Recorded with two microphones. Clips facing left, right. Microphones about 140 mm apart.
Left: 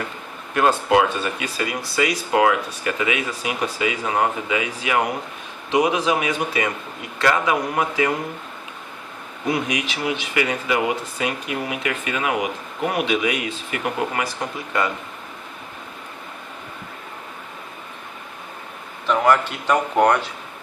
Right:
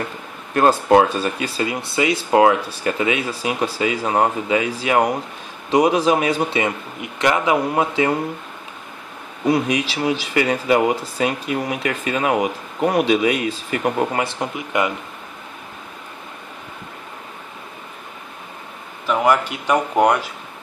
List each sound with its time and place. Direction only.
0.6 s a man's voice: 35° right (ahead or behind)
9.5 s speech: 35° right (ahead or behind)
19.0 s speech: 10° right (ahead or behind)